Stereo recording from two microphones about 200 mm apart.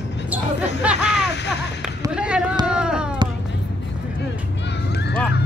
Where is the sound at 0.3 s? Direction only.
5° right (ahead or behind).